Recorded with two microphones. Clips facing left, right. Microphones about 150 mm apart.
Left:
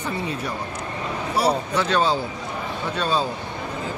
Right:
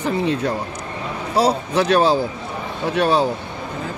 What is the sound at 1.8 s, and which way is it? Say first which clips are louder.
Speech: right 7 dB; 90° right.